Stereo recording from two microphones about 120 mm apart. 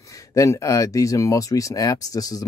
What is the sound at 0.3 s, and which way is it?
Speech, 25° left (ahead or behind).